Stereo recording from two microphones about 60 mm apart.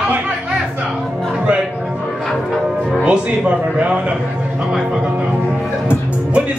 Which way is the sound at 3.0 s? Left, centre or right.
Centre.